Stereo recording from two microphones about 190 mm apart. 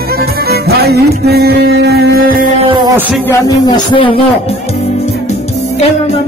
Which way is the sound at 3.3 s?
25° left (ahead or behind).